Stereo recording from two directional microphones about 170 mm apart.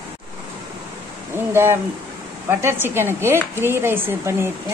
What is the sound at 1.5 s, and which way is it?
A woman's voice, 15° right (ahead or behind).